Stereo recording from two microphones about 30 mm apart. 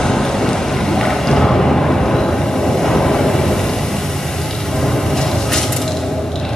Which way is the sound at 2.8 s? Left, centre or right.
Centre.